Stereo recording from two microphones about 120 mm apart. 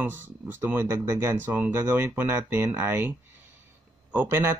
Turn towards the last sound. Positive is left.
turn(degrees=-20)  # may be behind; listen again after turning